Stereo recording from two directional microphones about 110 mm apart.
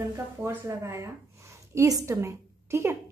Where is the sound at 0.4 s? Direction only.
25° right (ahead or behind).